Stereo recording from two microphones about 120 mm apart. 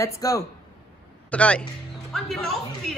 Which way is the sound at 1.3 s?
10° left (ahead or behind).